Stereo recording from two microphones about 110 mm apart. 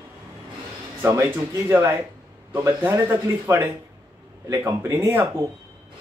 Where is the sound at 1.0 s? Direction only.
25° right (ahead or behind).